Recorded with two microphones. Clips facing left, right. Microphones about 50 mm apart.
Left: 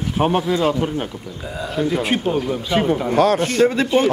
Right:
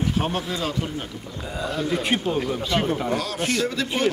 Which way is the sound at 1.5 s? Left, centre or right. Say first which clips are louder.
Left 4 dB; centre.